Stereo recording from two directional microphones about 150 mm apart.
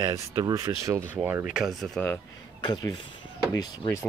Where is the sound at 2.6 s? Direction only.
30° left (ahead or behind).